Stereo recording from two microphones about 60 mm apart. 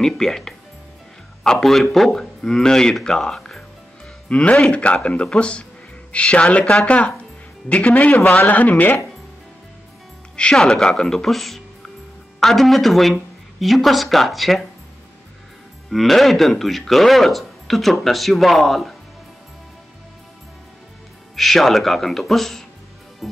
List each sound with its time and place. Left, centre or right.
0.0 s speech: centre
4.3 s speech: left
10.3 s speech: centre
15.9 s speech: centre
21.4 s speech: centre
23.2 s music: centre